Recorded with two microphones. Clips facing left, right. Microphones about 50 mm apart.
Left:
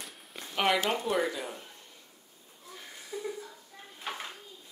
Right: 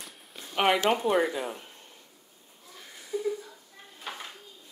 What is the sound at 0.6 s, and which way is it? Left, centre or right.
Speech, centre.